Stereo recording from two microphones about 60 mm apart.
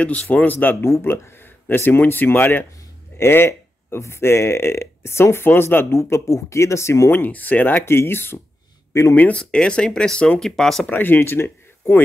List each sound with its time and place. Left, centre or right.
0.0 s speech: left
0.8 s speech: left
3.2 s speech: left
7.1 s speech: left
9.1 s speech: left
9.4 s speech: centre
10.4 s speech: centre
10.9 s speech: left